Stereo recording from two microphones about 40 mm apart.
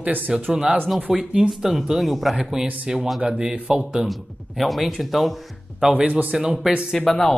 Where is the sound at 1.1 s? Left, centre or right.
Right.